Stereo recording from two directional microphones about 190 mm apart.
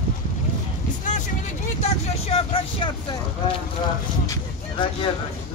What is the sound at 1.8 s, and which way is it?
Speech, 30° left (ahead or behind).